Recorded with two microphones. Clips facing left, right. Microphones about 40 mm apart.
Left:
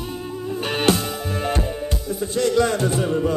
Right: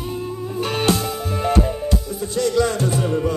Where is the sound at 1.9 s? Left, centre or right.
Left.